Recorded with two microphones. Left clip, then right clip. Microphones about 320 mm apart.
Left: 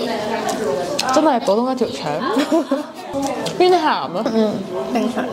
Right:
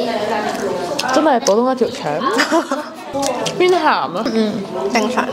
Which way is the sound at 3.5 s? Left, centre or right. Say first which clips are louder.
Even; centre.